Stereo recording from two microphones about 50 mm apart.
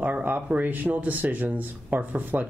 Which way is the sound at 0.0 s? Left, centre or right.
Right.